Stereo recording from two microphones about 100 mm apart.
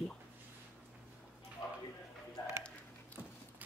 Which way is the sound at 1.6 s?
45° left (ahead or behind).